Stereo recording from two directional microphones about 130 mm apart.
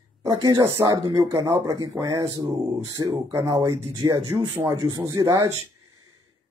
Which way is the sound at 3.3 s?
30° right (ahead or behind).